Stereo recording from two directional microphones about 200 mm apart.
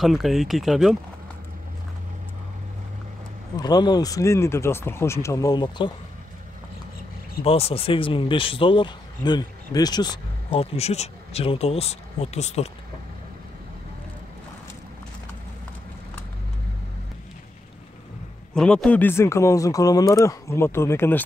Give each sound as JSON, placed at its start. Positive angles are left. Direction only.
{"t": 0.0, "sound": "speech", "side_deg": 0}
{"t": 3.5, "sound": "speech", "side_deg": 20}
{"t": 7.4, "sound": "speech", "side_deg": 30}
{"t": 18.5, "sound": "speech", "side_deg": 5}